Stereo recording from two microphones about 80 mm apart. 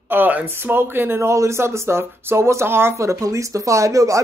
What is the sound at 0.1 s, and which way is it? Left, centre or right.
Speech, right.